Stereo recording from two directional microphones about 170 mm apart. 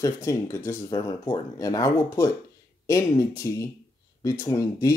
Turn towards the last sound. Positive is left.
turn(degrees=20)  # may be behind; listen again after turning